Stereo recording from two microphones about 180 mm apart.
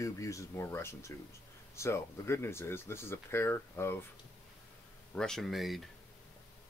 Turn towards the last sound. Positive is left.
turn(degrees=0)  # may be behind; listen again after turning